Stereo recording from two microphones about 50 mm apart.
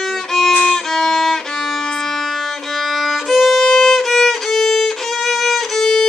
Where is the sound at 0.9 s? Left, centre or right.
Centre.